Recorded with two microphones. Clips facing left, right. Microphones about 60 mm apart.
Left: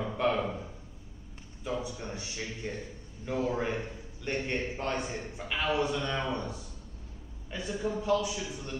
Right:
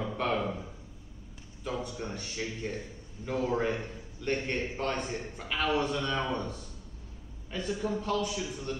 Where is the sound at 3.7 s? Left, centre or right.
Centre.